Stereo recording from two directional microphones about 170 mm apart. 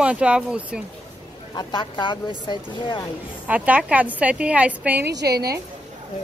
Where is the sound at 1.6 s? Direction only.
25° left (ahead or behind).